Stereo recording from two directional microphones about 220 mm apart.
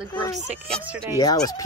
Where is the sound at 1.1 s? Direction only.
15° left (ahead or behind).